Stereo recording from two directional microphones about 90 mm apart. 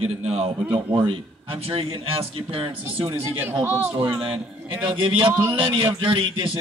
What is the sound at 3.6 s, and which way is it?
Speech, 25° right (ahead or behind).